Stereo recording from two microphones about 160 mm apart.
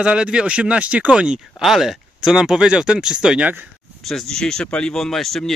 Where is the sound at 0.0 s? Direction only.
5° right (ahead or behind).